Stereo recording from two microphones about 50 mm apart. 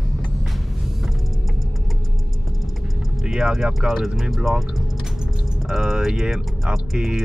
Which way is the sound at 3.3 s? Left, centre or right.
Centre.